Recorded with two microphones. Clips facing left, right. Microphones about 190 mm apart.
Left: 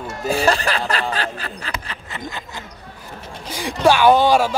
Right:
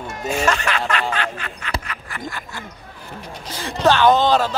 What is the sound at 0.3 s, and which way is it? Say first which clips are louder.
Speech: left 2 dB; 35° left (ahead or behind).